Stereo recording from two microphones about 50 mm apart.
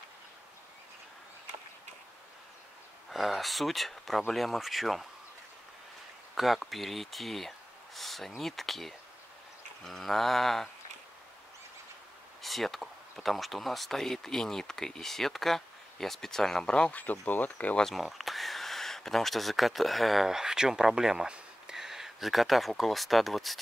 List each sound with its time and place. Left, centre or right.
3.1 s speech: centre
4.3 s a sound: centre
6.3 s speech: centre
8.4 s a sound: centre
12.4 s speech: centre
16.9 s speech: left
17.8 s speech: centre